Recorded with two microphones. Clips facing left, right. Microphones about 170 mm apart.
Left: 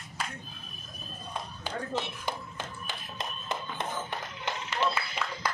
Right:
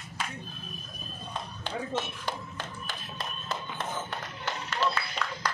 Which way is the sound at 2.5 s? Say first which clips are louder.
Even; 15° left (ahead or behind).